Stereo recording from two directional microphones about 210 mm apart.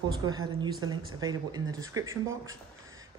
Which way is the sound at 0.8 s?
20° right (ahead or behind).